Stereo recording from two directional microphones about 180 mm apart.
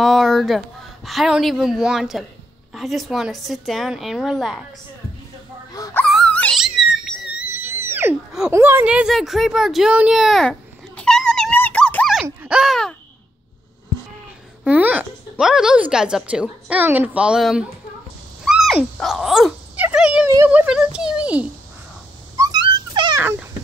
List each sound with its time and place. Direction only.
0.0 s speech: centre (ahead or behind)
5.7 s wail: 20° left (ahead or behind)
6.0 s dog: 5° left (ahead or behind)
7.3 s a sound: 10° right (ahead or behind)
8.5 s speech: 15° right (ahead or behind)
14.6 s speech: 10° right (ahead or behind)
18.4 s dog: centre (ahead or behind)
20.2 s a child's voice: 10° right (ahead or behind)
22.4 s dog: 25° right (ahead or behind)